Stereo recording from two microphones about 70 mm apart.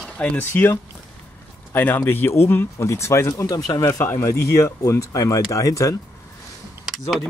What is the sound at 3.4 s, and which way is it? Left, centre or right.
Speech, left.